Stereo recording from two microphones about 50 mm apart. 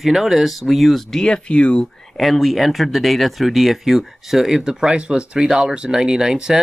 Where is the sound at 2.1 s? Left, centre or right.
Centre.